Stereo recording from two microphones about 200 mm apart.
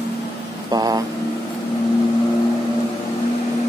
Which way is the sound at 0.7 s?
20° right (ahead or behind).